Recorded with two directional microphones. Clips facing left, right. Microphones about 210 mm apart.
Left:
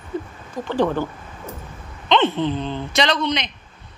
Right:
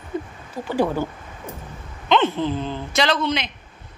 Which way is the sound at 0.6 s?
10° right (ahead or behind).